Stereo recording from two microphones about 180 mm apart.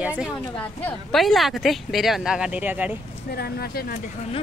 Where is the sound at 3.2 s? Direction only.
60° left (ahead or behind).